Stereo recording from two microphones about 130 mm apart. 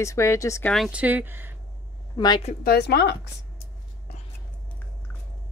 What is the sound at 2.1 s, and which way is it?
Speech, 35° left (ahead or behind).